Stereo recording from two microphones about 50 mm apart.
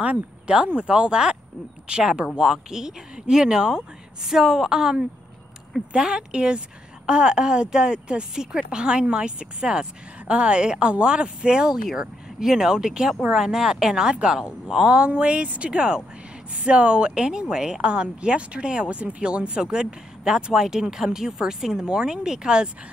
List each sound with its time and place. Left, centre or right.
0.0 s a woman's voice: right